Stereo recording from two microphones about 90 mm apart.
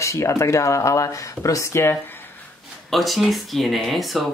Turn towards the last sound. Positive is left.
turn(degrees=0)  # may be behind; listen again after turning